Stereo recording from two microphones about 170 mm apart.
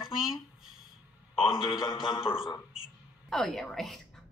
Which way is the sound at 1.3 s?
30° left (ahead or behind).